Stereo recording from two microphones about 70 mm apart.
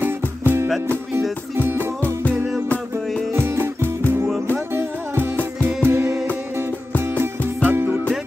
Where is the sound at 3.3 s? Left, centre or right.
Right.